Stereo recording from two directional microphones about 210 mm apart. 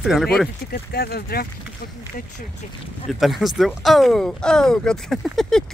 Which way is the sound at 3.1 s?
Centre (ahead or behind).